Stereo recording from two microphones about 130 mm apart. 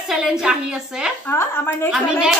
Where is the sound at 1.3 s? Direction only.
20° left (ahead or behind).